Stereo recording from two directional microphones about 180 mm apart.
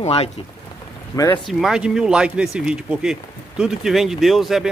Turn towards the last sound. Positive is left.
turn(degrees=0)  # may be behind; listen again after turning